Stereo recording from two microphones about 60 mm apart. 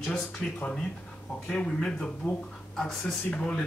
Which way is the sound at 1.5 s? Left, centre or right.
Centre.